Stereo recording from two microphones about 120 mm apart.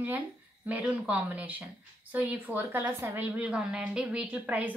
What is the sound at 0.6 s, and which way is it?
A woman's voice, 10° right (ahead or behind).